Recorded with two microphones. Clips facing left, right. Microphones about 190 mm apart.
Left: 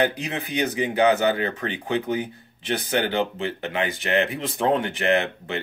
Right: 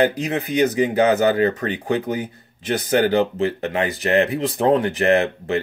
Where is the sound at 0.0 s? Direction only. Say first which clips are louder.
Right 5 dB; 40° right (ahead or behind).